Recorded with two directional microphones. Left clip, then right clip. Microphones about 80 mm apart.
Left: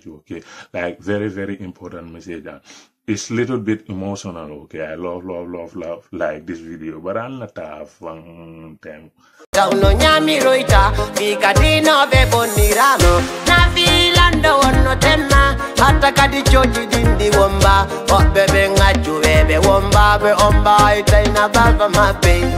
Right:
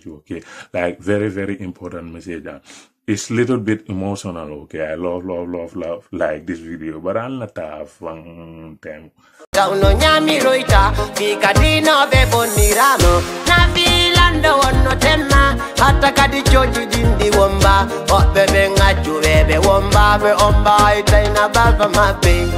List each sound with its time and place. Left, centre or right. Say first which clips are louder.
0.3 s speech: right 3 dB; right
9.5 s music: even; centre